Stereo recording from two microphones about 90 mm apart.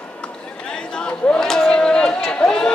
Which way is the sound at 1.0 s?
5° left (ahead or behind).